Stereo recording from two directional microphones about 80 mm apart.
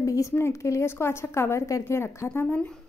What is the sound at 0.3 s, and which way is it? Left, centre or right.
A woman's voice, left.